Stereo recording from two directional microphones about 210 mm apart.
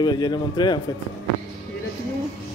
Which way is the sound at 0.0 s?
20° left (ahead or behind).